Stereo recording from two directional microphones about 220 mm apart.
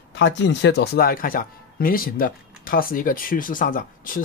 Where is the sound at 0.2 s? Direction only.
55° left (ahead or behind).